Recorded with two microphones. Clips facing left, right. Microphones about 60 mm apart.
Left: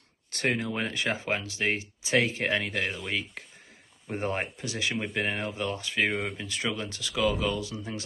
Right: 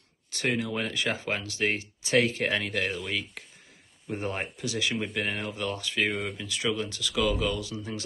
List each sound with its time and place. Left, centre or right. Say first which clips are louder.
0.3 s speech: even; left
0.7 s speech: even; left